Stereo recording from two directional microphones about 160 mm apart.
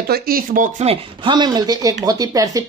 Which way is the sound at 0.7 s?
35° right (ahead or behind).